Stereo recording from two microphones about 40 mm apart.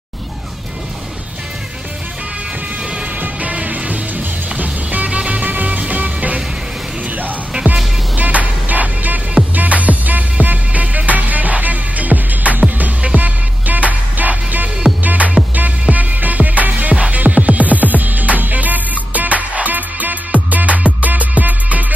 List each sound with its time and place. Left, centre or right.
3.2 s music: right
7.7 s music: right